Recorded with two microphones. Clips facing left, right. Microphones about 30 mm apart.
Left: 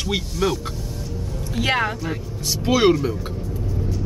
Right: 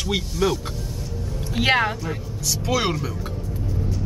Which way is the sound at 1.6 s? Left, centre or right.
Centre.